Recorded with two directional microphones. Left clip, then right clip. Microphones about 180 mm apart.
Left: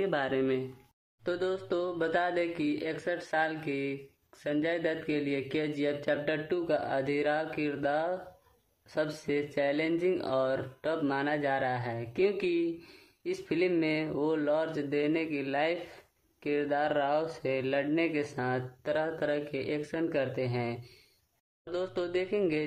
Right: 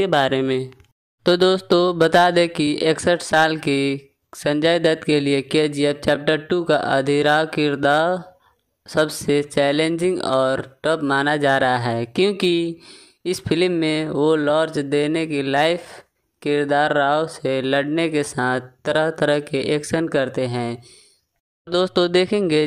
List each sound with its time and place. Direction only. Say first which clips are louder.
0.0 s mantra: right 12 dB; 40° right (ahead or behind)